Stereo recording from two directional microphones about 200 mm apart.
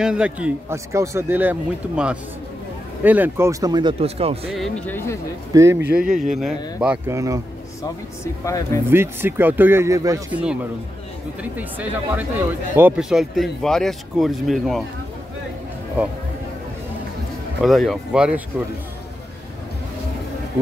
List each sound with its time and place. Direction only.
0.0 s a man's voice: 5° right (ahead or behind); by 4.5 s 30° right (ahead or behind)
4.5 s speech: centre (ahead or behind)
5.5 s a man's voice: 15° right (ahead or behind)
6.1 s speech: 40° right (ahead or behind)
6.8 s a man's voice: 10° right (ahead or behind)
8.5 s speech: 15° left (ahead or behind)
8.9 s a man's voice: 10° right (ahead or behind)
10.3 s a man's voice: 5° right (ahead or behind)
17.6 s speech: centre (ahead or behind)